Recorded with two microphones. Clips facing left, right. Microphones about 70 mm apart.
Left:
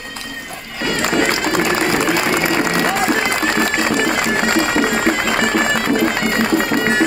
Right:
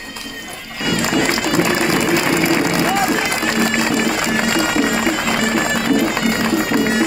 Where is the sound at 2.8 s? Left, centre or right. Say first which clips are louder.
Even; left.